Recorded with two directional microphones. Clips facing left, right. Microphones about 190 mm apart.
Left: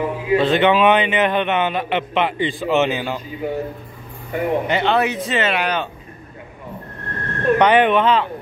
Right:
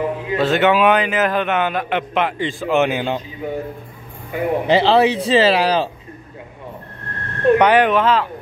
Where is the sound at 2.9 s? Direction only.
15° right (ahead or behind).